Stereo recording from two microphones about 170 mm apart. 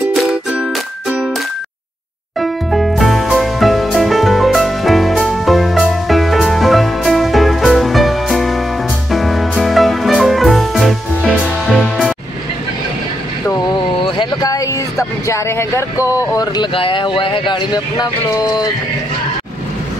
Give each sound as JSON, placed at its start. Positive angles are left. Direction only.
{"t": 0.1, "sound": "music", "side_deg": 0}
{"t": 2.4, "sound": "music", "side_deg": 0}
{"t": 13.9, "sound": "speech", "side_deg": 30}